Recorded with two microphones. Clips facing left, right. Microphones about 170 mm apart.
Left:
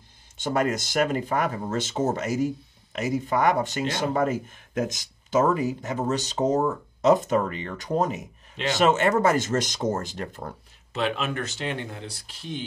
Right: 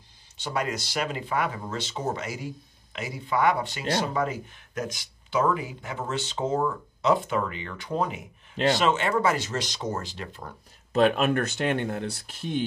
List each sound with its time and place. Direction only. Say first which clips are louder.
0.4 s speech: left 5 dB; 45° left (ahead or behind)
10.9 s speech: right 6 dB; 45° right (ahead or behind)